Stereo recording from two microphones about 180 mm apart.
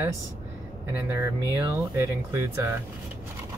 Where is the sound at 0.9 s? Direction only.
15° right (ahead or behind).